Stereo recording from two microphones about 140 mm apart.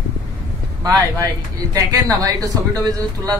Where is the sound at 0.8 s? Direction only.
25° right (ahead or behind).